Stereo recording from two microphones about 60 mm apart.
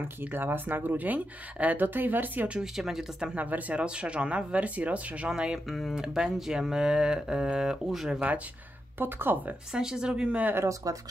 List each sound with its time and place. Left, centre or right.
0.2 s speech: right
2.5 s speech: centre
3.3 s speech: right
5.7 s speech: centre
8.9 s speech: right
9.7 s speech: centre
10.7 s speech: right